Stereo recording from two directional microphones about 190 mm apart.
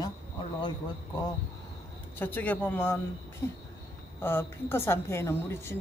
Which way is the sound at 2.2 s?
10° left (ahead or behind).